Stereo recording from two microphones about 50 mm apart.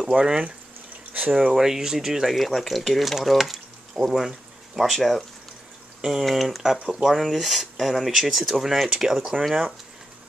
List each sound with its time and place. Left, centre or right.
0.1 s speech: centre
5.9 s speech: centre
6.2 s speech: centre